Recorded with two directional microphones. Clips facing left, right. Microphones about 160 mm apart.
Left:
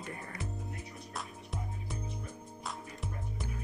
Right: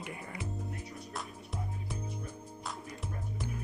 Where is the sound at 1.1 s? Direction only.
Centre (ahead or behind).